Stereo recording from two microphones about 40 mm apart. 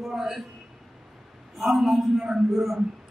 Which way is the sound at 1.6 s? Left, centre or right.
Centre.